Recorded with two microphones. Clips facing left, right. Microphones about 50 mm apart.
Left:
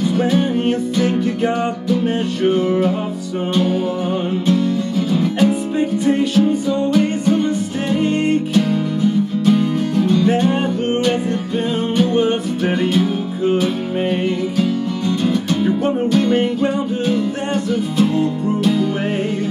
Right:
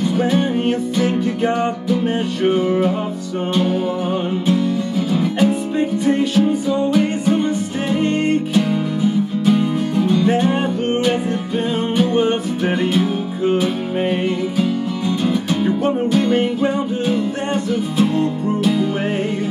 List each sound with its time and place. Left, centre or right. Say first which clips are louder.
0.2 s music: even; centre